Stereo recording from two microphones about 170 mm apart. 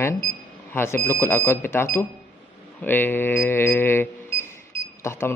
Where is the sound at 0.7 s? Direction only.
15° left (ahead or behind).